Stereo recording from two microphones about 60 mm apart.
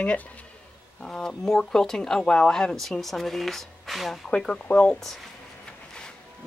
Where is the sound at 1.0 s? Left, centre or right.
Centre.